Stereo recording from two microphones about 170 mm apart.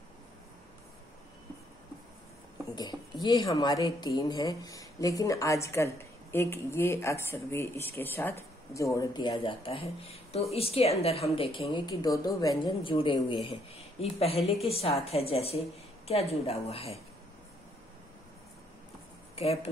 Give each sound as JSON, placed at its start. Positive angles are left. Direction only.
{"t": 2.7, "sound": "a woman's voice", "side_deg": 25}
{"t": 19.3, "sound": "speech", "side_deg": 35}